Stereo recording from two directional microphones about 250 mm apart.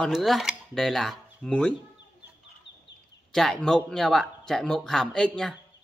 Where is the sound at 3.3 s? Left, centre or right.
Centre.